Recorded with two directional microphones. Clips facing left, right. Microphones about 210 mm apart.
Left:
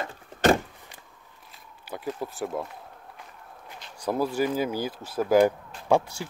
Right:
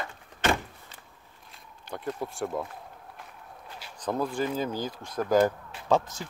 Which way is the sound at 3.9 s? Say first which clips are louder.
Left 3 dB; 10° left (ahead or behind).